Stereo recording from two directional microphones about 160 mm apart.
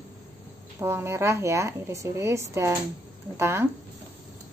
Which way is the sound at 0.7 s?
15° right (ahead or behind).